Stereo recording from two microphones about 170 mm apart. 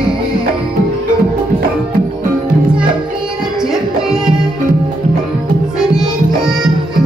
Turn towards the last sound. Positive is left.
turn(degrees=-5)  # may be behind; listen again after turning